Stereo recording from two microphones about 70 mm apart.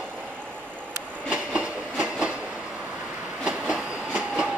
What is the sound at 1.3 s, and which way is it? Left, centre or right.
Train, centre.